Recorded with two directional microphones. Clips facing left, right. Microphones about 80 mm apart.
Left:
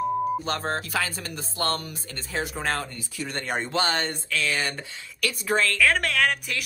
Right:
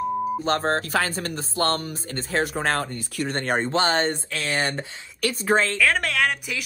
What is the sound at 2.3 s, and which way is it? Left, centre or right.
Speech, right.